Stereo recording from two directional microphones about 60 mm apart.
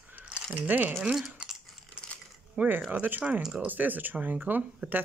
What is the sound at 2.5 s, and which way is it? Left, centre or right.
Speech, right.